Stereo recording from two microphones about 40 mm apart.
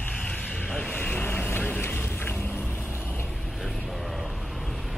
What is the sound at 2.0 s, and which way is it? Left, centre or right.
Vehicle, left.